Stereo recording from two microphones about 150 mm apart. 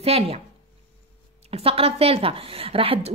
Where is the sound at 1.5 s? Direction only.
40° right (ahead or behind).